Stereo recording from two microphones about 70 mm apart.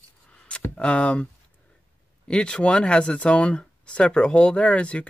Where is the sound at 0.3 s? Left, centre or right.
Centre.